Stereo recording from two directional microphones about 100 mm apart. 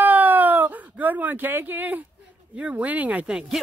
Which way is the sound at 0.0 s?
20° right (ahead or behind).